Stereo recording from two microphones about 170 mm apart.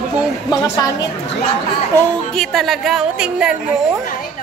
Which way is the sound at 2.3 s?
Centre (ahead or behind).